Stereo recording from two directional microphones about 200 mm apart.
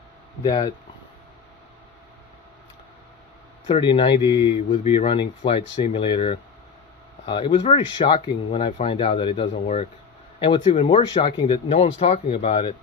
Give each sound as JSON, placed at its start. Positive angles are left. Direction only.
{"t": 0.4, "sound": "speech", "side_deg": 20}
{"t": 3.6, "sound": "speech", "side_deg": 25}